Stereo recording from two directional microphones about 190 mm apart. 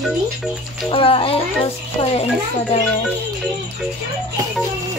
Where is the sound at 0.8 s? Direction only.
30° left (ahead or behind).